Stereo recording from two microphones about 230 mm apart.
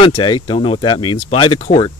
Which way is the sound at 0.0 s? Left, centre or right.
Left.